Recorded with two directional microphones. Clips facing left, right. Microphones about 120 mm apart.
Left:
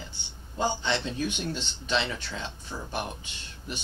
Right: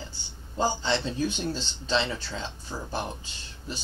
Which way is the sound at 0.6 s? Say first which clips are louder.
Right 2 dB; 35° right (ahead or behind).